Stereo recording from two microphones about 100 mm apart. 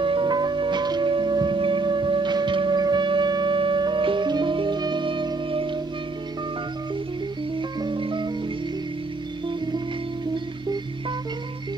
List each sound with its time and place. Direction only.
0.0 s music: 55° right (ahead or behind)
7.8 s music: 55° right (ahead or behind)